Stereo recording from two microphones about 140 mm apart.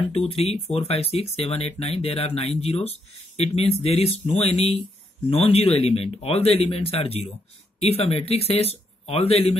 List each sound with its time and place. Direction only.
0.1 s speech: 45° left (ahead or behind)